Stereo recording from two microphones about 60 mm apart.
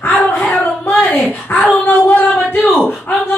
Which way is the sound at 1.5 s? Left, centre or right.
Left.